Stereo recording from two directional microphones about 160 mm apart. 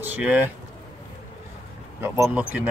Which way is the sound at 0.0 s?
10° right (ahead or behind).